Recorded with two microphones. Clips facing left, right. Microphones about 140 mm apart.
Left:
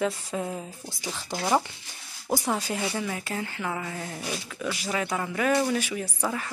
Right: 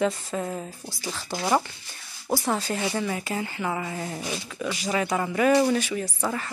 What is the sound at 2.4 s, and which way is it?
A woman's voice, 10° left (ahead or behind).